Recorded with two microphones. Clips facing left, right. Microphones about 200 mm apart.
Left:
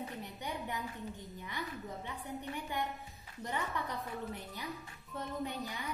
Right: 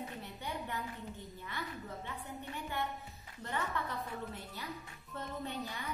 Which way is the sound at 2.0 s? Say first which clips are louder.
Left 2 dB; 15° left (ahead or behind).